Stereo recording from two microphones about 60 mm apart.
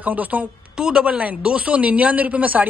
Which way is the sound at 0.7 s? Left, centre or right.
Centre.